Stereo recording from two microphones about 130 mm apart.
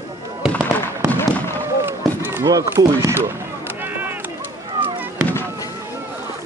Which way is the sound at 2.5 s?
20° right (ahead or behind).